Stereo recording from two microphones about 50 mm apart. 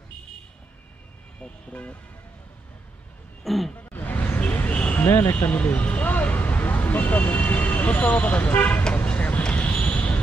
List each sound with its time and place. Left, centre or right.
1.4 s speech: left
3.4 s a sound: centre
3.9 s vehicle: left
5.0 s speech: left
5.5 s vehicle: left
9.8 s basketball bounce: left